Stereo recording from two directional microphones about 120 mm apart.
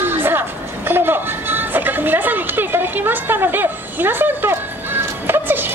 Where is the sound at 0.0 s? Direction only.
20° right (ahead or behind).